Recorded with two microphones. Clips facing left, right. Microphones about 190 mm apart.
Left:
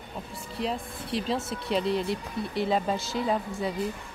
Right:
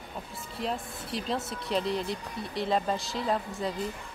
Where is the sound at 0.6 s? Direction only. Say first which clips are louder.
Left 2 dB; centre (ahead or behind).